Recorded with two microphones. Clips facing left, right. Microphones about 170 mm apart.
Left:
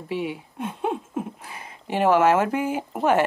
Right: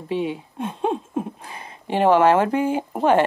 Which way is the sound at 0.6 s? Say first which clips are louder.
Right 3 dB; 30° right (ahead or behind).